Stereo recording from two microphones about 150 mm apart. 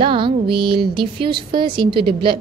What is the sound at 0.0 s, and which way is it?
A woman's voice, 35° right (ahead or behind).